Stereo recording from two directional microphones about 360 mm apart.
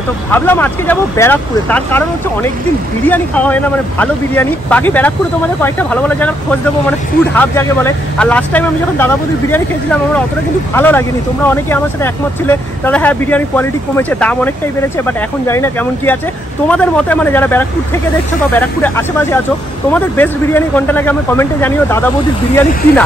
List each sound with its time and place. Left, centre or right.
0.3 s speech: centre
7.3 s speech: centre